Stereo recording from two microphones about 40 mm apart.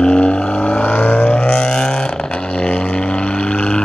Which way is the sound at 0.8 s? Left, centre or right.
Left.